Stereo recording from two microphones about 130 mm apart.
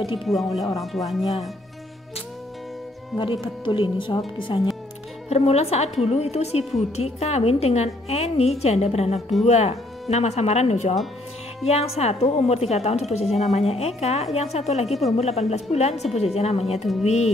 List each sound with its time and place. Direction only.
0.2 s speech: centre (ahead or behind)
3.2 s speech: 40° left (ahead or behind)
5.3 s a woman's voice: 55° left (ahead or behind)